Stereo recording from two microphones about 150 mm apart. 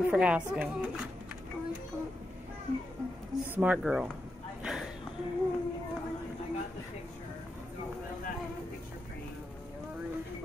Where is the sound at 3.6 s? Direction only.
5° right (ahead or behind).